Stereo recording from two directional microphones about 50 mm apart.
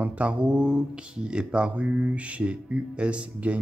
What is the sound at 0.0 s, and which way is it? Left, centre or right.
Speech, right.